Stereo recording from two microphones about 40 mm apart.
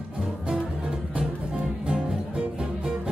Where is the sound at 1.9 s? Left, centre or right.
Right.